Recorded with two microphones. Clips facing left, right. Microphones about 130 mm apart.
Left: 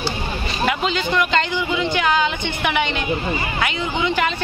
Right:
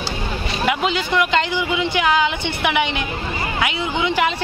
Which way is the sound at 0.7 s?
15° right (ahead or behind).